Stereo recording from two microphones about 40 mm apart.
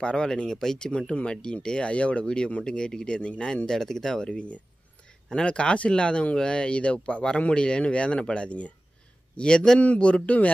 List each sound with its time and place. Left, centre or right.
0.0 s speech: left
0.5 s speech: centre
3.6 s speech: centre
5.3 s speech: left